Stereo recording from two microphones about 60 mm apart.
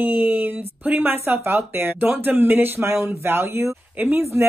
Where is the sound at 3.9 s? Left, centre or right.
Right.